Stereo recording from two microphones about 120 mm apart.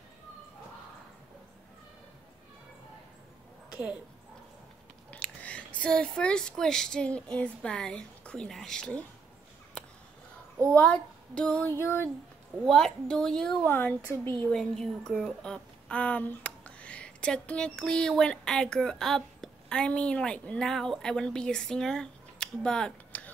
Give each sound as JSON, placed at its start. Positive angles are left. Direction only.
{"t": 5.1, "sound": "speech", "side_deg": 10}
{"t": 10.7, "sound": "speech", "side_deg": 10}
{"t": 11.8, "sound": "speech", "side_deg": 20}
{"t": 12.6, "sound": "a woman's voice", "side_deg": 5}
{"t": 13.7, "sound": "speech", "side_deg": 20}
{"t": 14.5, "sound": "a woman's voice", "side_deg": 5}